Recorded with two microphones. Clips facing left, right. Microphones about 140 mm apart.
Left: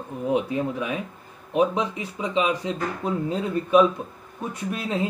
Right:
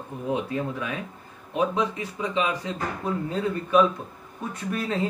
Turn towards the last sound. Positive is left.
turn(degrees=15)  # may be behind; listen again after turning